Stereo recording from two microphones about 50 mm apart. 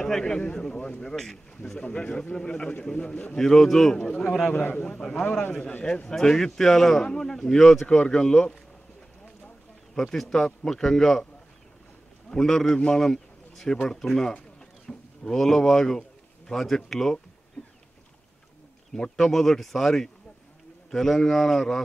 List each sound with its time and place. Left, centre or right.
0.0 s a man's voice: centre
1.1 s speech: centre
1.6 s a man's voice: left
3.3 s a man's voice: centre
6.0 s a man's voice: centre
9.9 s a man's voice: centre
12.3 s a man's voice: centre
17.6 s boat: left
18.9 s a man's voice: centre